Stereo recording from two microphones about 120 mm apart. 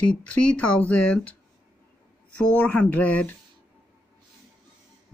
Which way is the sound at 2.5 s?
10° left (ahead or behind).